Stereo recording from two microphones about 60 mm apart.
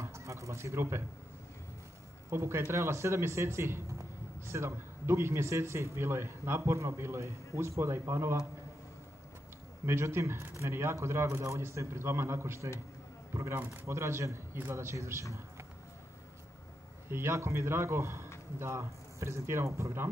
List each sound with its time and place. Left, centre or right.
0.0 s a sound: right
2.3 s a man's voice: right
9.8 s a man's voice: right
14.6 s a man's voice: right
14.9 s a man's voice: right
17.1 s a man's voice: right